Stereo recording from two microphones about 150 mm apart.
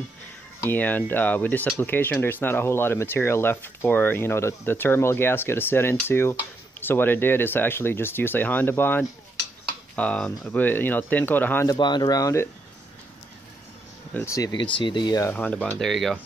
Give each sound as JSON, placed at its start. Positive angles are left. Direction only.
{"t": 0.6, "sound": "speech", "side_deg": 15}
{"t": 11.6, "sound": "speech", "side_deg": 30}
{"t": 14.1, "sound": "speech", "side_deg": 20}